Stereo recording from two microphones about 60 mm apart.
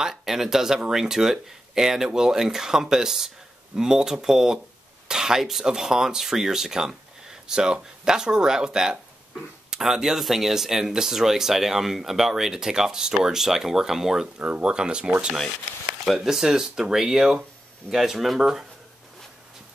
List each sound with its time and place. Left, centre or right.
0.0 s speech: centre
14.4 s speech: centre